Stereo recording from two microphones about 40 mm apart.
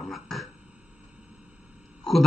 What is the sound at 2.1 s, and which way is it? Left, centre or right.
Speech, centre.